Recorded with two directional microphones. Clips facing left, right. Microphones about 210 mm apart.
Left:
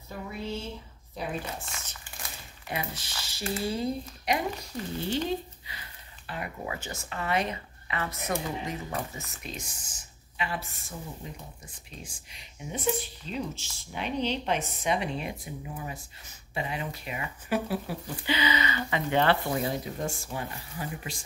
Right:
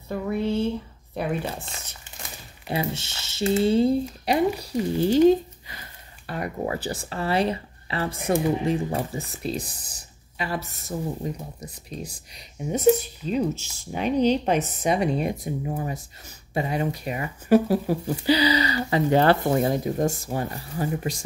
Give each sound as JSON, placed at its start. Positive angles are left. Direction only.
{"t": 0.1, "sound": "a sound", "side_deg": -60}
{"t": 1.1, "sound": "speech", "side_deg": -60}
{"t": 2.7, "sound": "speech", "side_deg": -30}